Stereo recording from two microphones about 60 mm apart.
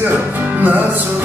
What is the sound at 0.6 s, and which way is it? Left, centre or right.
Music, right.